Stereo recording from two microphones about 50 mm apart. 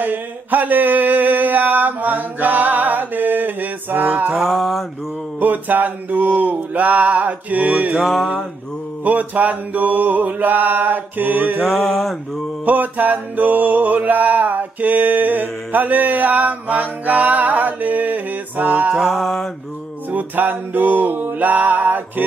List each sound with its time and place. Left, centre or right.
0.0 s a sound: right
4.4 s a sound: centre
5.4 s mantra: right
9.0 s mantra: right
12.0 s mantra: centre
12.6 s mantra: right
18.9 s mantra: centre
20.1 s mantra: right